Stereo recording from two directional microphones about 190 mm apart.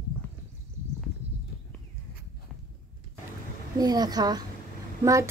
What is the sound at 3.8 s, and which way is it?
A woman's voice, 20° right (ahead or behind).